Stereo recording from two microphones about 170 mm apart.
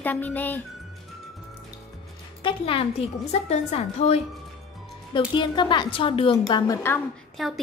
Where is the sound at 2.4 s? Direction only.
30° left (ahead or behind).